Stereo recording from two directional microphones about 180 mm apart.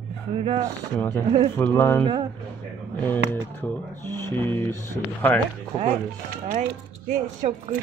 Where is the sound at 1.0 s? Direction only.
10° left (ahead or behind).